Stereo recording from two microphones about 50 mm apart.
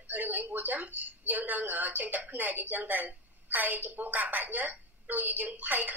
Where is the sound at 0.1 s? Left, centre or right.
Right.